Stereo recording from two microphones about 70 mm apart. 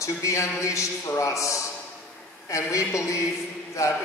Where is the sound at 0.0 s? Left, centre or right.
Left.